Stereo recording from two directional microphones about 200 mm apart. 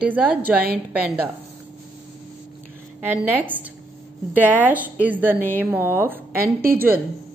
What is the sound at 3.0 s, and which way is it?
A woman's voice, 10° right (ahead or behind).